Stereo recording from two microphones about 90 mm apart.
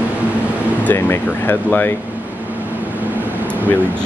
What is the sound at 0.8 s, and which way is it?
Speech, 25° left (ahead or behind).